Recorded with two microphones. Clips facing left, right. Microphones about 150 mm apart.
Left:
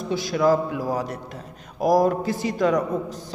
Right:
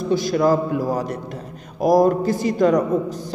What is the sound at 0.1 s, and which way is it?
A man's voice, centre (ahead or behind).